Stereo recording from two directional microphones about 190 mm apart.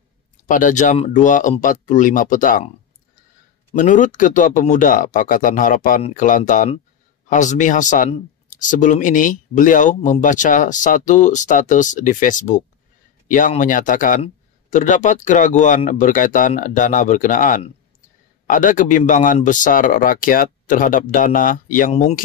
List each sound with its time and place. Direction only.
0.5 s speech: 45° left (ahead or behind)
3.7 s speech: 40° left (ahead or behind)